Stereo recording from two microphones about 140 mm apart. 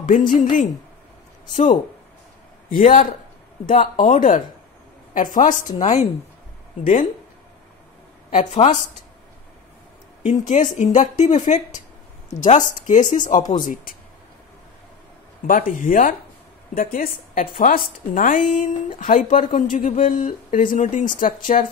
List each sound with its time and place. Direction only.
0.3 s speech: 65° left (ahead or behind)
2.8 s speech: 65° left (ahead or behind)
5.8 s a woman's voice: 50° left (ahead or behind)
6.8 s speech: 75° left (ahead or behind)
8.3 s speech: 55° left (ahead or behind)
10.2 s speech: 60° left (ahead or behind)
15.4 s speech: 75° left (ahead or behind)
16.7 s a woman's voice: 85° left; by 21.6 s 70° left (ahead or behind)